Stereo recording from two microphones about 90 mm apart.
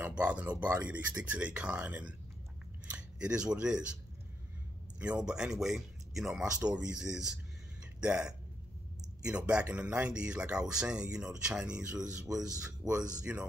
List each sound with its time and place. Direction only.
0.0 s speech: 15° right (ahead or behind)
5.2 s speech: 10° right (ahead or behind)